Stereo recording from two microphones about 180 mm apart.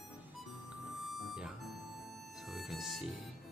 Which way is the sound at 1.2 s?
Centre (ahead or behind).